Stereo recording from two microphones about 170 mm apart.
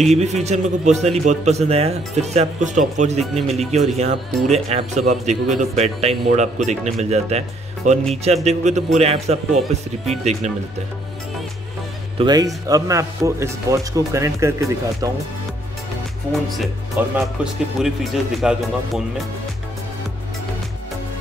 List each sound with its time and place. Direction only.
0.1 s a man's voice: 40° right (ahead or behind)
12.2 s speech: 25° right (ahead or behind)
16.3 s speech: centre (ahead or behind)
17.0 s speech: 10° right (ahead or behind)